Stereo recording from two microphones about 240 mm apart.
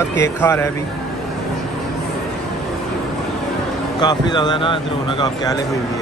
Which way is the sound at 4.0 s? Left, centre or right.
Centre.